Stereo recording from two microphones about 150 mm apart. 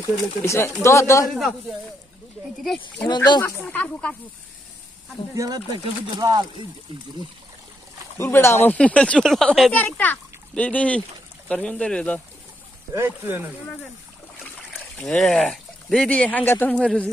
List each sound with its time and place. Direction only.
0.4 s speech: 15° left (ahead or behind)
1.3 s speech: centre (ahead or behind)
3.3 s speech: 25° left (ahead or behind)
3.6 s speech: 10° left (ahead or behind)
5.3 s speech: 20° right (ahead or behind)
8.2 s speech: 15° left (ahead or behind)
12.9 s speech: 15° right (ahead or behind)
14.8 s speech: 5° left (ahead or behind)